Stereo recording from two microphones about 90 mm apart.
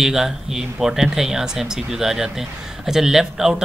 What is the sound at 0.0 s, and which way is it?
Speech, 5° right (ahead or behind).